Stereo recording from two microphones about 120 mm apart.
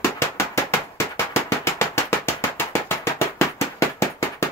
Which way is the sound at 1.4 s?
20° left (ahead or behind).